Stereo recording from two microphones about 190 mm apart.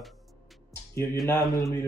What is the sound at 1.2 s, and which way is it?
Speech, 20° left (ahead or behind).